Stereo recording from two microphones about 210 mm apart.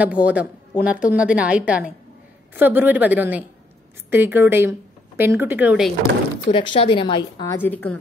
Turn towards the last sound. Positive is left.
turn(degrees=10)  # may be behind; listen again after turning